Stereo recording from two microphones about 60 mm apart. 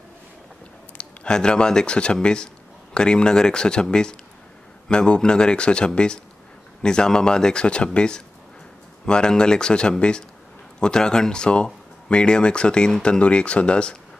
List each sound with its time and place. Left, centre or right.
0.9 s speech: centre